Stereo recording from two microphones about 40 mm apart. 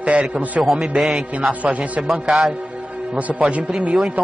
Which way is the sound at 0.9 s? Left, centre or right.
Centre.